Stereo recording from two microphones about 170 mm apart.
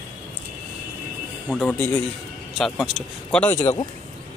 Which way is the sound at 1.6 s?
5° left (ahead or behind).